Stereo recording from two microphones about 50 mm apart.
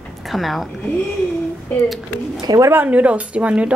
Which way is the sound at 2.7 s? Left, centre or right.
Right.